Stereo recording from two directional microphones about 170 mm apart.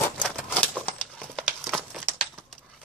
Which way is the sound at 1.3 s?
Centre (ahead or behind).